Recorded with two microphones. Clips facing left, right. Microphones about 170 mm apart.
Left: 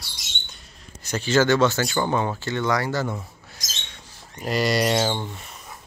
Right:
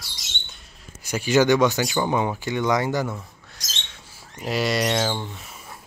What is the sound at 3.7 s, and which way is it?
Speech, centre (ahead or behind).